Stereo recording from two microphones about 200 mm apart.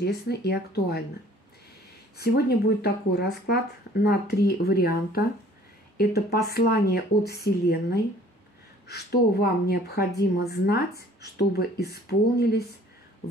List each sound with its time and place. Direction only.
0.0 s speech: 55° left (ahead or behind)
2.1 s speech: 55° left (ahead or behind)